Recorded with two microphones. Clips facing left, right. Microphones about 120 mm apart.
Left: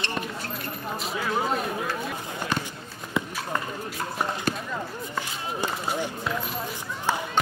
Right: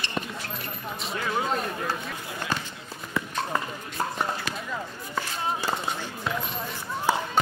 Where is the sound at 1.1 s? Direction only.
5° left (ahead or behind).